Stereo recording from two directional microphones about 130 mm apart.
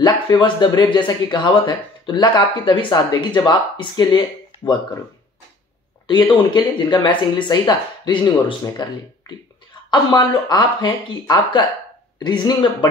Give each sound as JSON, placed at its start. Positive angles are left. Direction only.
{"t": 0.0, "sound": "speech", "side_deg": 35}
{"t": 6.3, "sound": "speech", "side_deg": 35}
{"t": 9.8, "sound": "speech", "side_deg": 35}